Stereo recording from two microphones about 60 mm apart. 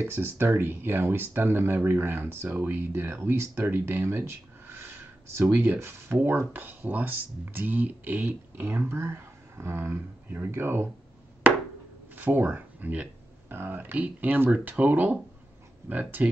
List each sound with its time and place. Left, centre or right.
0.0 s speech: right
6.2 s speech: right
12.2 s a sound: right
13.6 s speech: right